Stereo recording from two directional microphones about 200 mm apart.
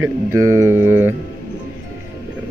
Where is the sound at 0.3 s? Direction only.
90° right.